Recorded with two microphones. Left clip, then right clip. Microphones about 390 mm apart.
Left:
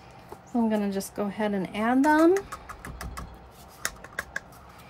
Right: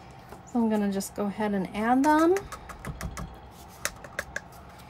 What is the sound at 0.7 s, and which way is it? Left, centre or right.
Speech, centre.